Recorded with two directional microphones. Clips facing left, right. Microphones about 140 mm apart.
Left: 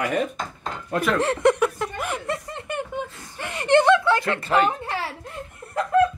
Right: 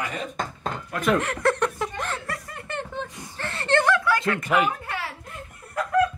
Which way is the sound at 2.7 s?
10° left (ahead or behind).